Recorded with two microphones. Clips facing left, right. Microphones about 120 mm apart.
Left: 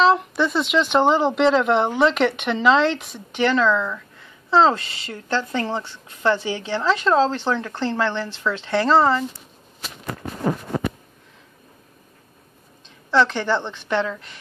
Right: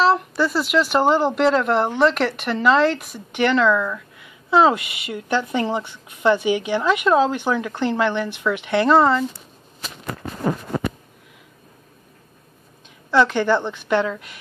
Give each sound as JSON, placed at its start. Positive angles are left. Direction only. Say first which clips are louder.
{"t": 0.0, "sound": "a woman's voice", "louder": "even", "side_deg": -5}
{"t": 13.1, "sound": "a woman's voice", "louder": "right 2 dB", "side_deg": -10}